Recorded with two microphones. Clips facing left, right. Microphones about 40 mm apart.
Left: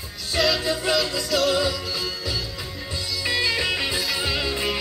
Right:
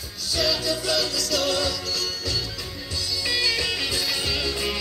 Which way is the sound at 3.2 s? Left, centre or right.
Centre.